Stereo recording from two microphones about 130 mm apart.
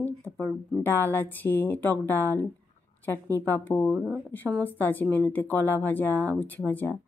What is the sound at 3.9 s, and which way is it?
Speech, centre (ahead or behind).